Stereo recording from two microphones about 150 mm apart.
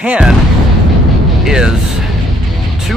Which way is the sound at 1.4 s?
5° right (ahead or behind).